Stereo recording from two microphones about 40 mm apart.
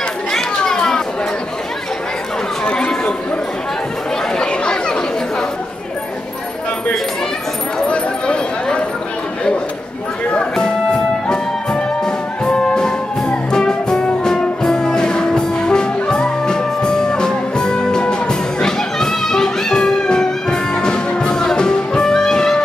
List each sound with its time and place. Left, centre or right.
0.3 s chatter: centre
2.6 s chatter: left
4.4 s chatter: left
7.9 s a sound: left
10.5 s music: centre